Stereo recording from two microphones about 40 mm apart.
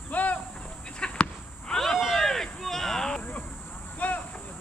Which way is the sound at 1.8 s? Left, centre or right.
Centre.